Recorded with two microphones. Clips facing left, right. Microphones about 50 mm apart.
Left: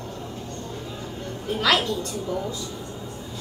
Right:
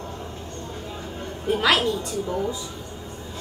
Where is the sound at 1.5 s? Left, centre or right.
Right.